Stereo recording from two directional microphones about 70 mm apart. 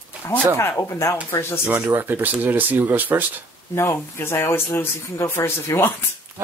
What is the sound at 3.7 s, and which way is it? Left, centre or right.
Speech, left.